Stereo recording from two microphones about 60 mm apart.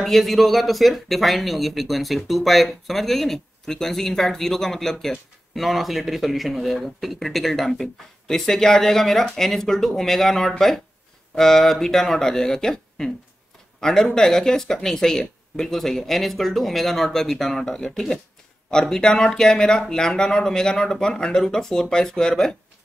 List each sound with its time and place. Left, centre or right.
0.0 s speech: centre